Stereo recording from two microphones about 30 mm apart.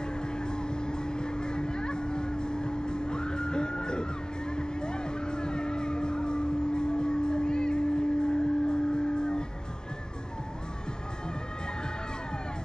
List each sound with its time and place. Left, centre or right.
0.0 s vehicle: left